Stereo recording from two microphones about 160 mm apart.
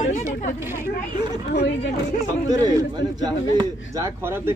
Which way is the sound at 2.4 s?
25° right (ahead or behind).